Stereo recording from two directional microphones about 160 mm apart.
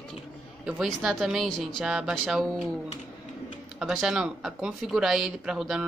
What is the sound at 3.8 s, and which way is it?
Speech, centre (ahead or behind).